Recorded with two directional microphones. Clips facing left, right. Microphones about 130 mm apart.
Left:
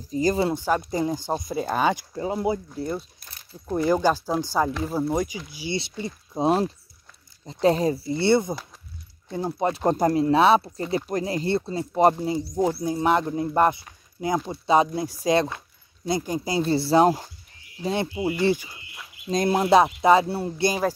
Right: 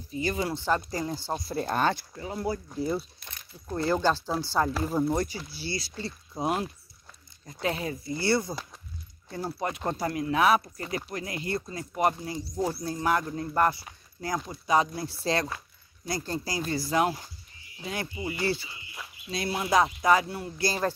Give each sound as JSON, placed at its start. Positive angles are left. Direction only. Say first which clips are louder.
{"t": 0.1, "sound": "speech", "louder": "left 7 dB", "side_deg": 35}
{"t": 0.5, "sound": "speech", "louder": "left 4 dB", "side_deg": 10}
{"t": 2.1, "sound": "speech", "louder": "left 7 dB", "side_deg": 25}
{"t": 2.7, "sound": "speech", "louder": "even", "side_deg": -5}
{"t": 3.2, "sound": "speech", "louder": "right 1 dB", "side_deg": 40}
{"t": 3.6, "sound": "speech", "louder": "left 5 dB", "side_deg": 15}
{"t": 9.7, "sound": "speech", "louder": "left 11 dB", "side_deg": 35}
{"t": 11.1, "sound": "speech", "louder": "left 8 dB", "side_deg": 40}
{"t": 16.5, "sound": "speech", "louder": "left 8 dB", "side_deg": 30}
{"t": 18.4, "sound": "speech", "louder": "left 7 dB", "side_deg": 15}
{"t": 19.2, "sound": "speech", "louder": "left 9 dB", "side_deg": 45}
{"t": 19.7, "sound": "speech", "louder": "left 5 dB", "side_deg": 25}